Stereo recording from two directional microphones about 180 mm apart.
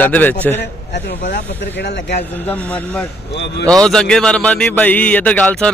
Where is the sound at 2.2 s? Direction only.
10° left (ahead or behind).